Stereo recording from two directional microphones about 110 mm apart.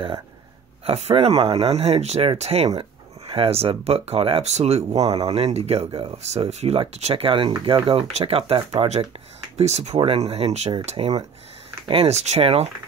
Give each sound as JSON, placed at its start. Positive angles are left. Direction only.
{"t": 0.8, "sound": "speech", "side_deg": -70}
{"t": 2.8, "sound": "speech", "side_deg": -60}
{"t": 9.6, "sound": "speech", "side_deg": -85}
{"t": 9.9, "sound": "speech", "side_deg": -65}